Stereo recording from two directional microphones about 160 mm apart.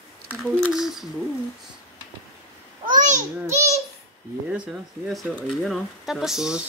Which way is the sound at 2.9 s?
50° right (ahead or behind).